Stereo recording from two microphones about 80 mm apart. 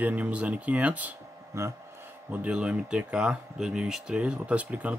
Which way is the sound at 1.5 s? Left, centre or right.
Right.